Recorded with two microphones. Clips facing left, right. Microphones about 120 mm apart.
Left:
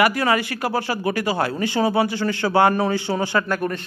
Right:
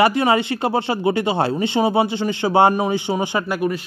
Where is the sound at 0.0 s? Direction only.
25° right (ahead or behind).